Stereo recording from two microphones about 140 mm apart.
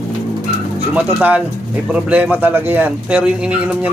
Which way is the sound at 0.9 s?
10° right (ahead or behind).